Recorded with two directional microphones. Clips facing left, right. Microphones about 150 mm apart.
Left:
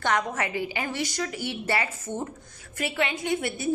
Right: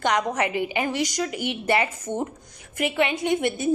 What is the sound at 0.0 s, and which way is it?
A woman's voice, 15° right (ahead or behind).